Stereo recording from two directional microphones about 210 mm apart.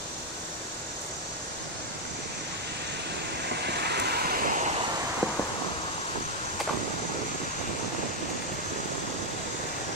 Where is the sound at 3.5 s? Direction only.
50° right (ahead or behind).